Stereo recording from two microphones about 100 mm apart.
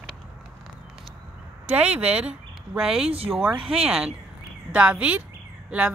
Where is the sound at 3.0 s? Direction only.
70° right (ahead or behind).